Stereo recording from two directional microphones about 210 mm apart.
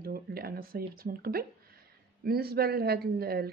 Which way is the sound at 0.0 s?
45° right (ahead or behind).